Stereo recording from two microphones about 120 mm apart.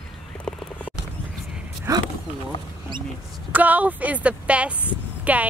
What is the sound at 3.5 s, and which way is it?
A woman's voice, 15° right (ahead or behind).